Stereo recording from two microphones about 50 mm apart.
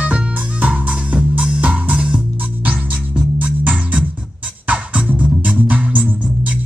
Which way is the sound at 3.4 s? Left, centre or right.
Right.